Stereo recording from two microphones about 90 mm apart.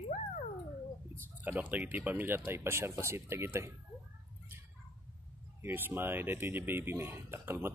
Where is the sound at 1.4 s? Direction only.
20° right (ahead or behind).